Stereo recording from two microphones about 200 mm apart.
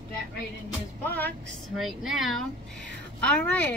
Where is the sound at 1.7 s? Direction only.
Centre (ahead or behind).